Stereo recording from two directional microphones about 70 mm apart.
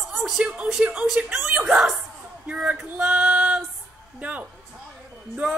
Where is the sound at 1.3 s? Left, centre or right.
Centre.